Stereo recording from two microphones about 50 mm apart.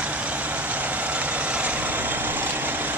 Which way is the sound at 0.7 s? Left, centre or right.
Right.